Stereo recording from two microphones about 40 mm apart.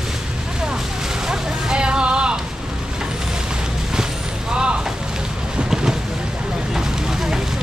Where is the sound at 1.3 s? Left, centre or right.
Right.